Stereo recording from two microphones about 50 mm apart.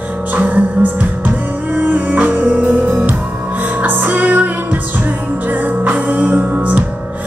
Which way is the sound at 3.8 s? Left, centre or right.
Right.